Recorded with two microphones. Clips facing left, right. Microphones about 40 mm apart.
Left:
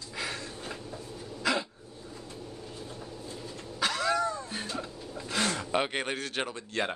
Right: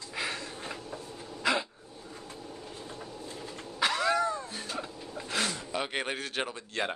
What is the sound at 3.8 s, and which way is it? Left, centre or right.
Cat, centre.